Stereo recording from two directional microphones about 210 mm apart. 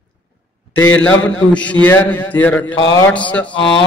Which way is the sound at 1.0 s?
5° left (ahead or behind).